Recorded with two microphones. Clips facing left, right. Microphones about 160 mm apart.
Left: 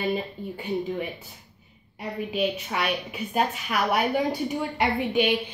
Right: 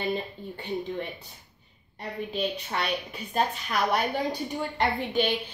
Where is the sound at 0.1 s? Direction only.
10° left (ahead or behind).